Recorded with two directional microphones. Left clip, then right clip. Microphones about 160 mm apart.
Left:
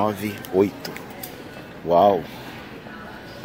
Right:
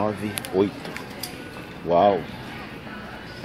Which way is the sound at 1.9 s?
30° left (ahead or behind).